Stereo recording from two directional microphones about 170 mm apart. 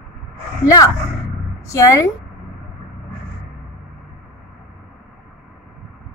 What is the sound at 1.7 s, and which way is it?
Speech, 20° left (ahead or behind).